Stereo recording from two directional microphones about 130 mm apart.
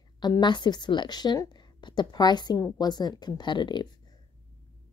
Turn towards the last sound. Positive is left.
turn(degrees=35)  # may be behind; listen again after turning